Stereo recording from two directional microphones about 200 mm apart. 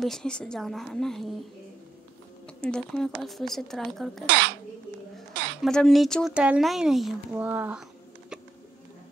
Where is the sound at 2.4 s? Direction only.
5° left (ahead or behind).